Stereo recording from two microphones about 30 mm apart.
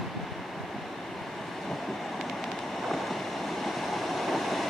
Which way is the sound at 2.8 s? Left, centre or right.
Centre.